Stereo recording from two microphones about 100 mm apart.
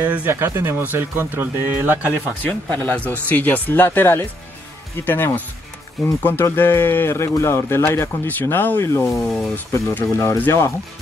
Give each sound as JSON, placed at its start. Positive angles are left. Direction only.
{"t": 0.0, "sound": "speech", "side_deg": -20}
{"t": 2.4, "sound": "speech", "side_deg": 20}
{"t": 6.4, "sound": "speech", "side_deg": 25}